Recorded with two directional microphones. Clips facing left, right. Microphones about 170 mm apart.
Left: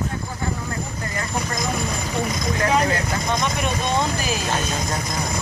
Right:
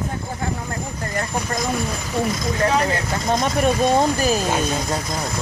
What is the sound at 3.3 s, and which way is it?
Speech, 40° right (ahead or behind).